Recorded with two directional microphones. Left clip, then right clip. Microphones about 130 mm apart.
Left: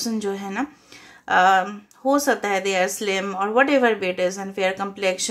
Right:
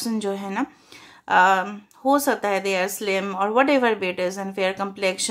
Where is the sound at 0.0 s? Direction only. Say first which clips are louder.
Even; 35° right (ahead or behind).